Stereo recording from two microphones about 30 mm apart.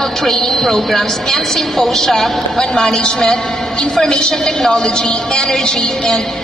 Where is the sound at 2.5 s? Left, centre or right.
Left.